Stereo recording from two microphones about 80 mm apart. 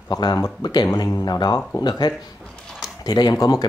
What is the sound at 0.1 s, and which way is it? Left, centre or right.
Speech, left.